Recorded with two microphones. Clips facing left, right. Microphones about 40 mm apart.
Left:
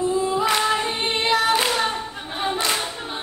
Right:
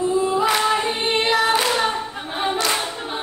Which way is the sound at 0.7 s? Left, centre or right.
Centre.